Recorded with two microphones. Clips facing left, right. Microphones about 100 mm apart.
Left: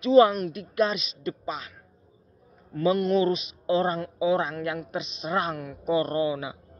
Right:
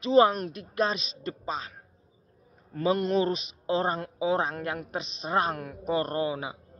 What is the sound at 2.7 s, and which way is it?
Speech, 35° right (ahead or behind).